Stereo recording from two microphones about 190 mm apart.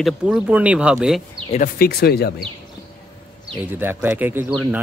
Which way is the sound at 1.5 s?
55° left (ahead or behind).